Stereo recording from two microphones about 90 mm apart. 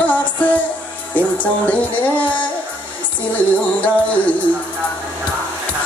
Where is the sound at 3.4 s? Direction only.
15° left (ahead or behind).